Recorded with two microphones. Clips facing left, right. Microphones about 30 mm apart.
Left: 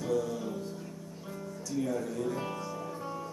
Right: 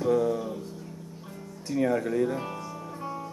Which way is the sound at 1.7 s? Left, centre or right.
Right.